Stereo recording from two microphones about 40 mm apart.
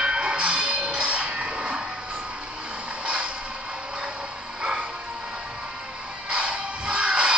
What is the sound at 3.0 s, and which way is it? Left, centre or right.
Creak, right.